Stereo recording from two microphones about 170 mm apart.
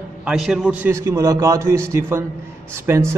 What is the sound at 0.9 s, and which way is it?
A man's voice, 15° right (ahead or behind).